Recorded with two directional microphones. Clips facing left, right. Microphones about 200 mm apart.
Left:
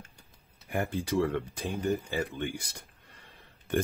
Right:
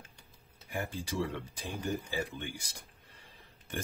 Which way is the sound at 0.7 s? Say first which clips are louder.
Left 7 dB; 60° left (ahead or behind).